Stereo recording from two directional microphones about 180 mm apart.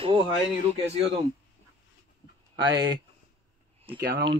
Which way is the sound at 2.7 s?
25° right (ahead or behind).